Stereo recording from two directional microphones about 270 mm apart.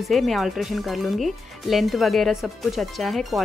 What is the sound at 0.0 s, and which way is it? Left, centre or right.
Speech, centre.